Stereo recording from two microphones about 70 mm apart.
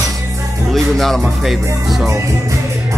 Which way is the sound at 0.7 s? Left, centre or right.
Centre.